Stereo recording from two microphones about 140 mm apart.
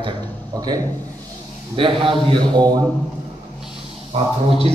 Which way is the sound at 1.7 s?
40° right (ahead or behind).